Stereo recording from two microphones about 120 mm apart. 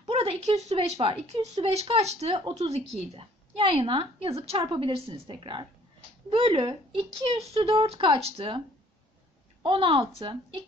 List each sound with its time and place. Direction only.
0.0 s speech: 60° right (ahead or behind)